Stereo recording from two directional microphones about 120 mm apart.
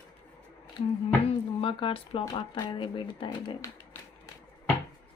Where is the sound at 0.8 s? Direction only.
45° left (ahead or behind).